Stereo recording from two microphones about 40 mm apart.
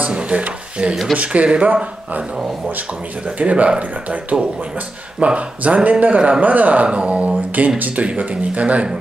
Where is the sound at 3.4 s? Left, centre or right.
Right.